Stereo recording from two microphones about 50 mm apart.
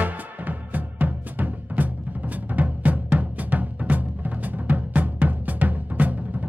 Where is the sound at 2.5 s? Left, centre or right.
Right.